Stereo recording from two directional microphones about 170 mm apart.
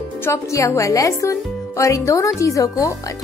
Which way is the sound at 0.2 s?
15° left (ahead or behind).